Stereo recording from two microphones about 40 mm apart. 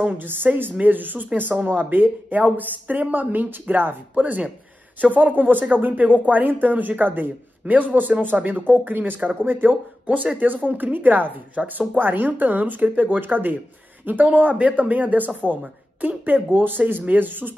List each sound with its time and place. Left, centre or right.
0.1 s speech: right
4.1 s speech: right
10.0 s speech: right